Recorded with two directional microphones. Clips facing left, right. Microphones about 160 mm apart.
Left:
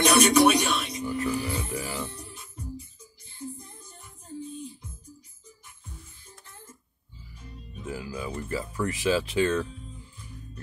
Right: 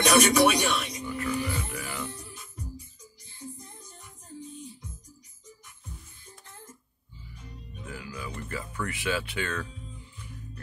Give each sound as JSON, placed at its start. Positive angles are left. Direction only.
{"t": 0.0, "sound": "music", "side_deg": 30}
{"t": 7.8, "sound": "speech", "side_deg": 30}